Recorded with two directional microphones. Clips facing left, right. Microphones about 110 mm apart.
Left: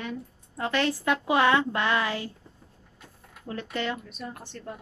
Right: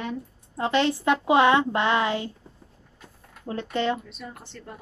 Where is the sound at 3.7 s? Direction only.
25° right (ahead or behind).